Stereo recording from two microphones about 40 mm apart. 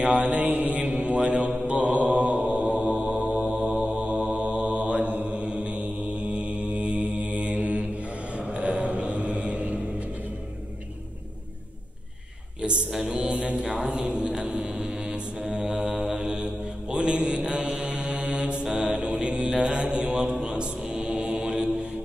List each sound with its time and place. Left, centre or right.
0.0 s mantra: right
0.7 s mantra: right
13.0 s mantra: right
20.2 s mantra: centre